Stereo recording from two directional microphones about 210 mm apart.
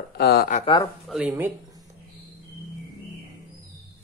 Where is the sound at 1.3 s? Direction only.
15° right (ahead or behind).